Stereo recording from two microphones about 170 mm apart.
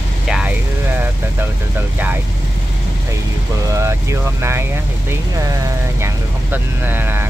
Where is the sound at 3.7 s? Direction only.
15° right (ahead or behind).